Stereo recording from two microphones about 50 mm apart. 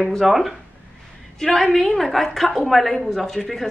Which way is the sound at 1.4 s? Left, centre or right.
Centre.